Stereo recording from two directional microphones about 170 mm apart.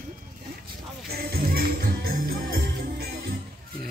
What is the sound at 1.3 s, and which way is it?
Music, 65° right (ahead or behind).